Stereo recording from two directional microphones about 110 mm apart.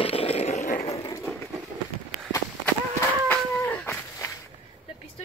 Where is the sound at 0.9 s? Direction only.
35° left (ahead or behind).